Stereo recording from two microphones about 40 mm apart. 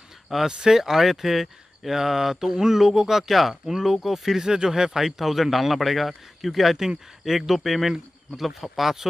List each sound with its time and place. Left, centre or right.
0.5 s speech: right
0.7 s speech: centre